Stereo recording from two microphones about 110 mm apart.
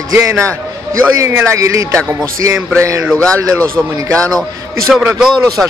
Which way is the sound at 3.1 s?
10° left (ahead or behind).